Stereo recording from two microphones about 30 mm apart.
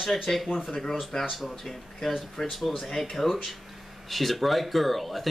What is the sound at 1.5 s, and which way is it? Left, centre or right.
Speech, centre.